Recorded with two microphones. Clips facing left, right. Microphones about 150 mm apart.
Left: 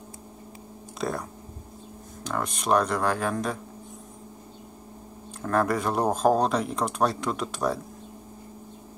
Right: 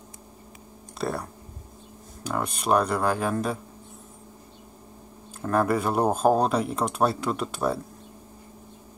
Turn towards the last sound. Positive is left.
turn(degrees=-5)  # may be behind; listen again after turning